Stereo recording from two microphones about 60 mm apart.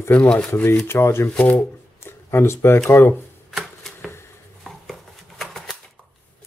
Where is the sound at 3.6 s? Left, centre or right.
Centre.